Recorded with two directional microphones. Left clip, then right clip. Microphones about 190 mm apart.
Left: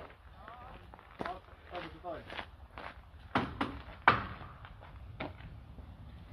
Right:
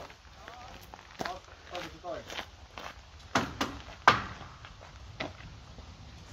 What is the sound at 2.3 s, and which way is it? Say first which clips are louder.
Walk: right 3 dB; 25° right (ahead or behind).